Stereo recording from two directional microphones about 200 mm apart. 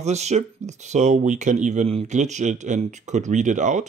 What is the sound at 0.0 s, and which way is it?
A man's voice, 35° right (ahead or behind).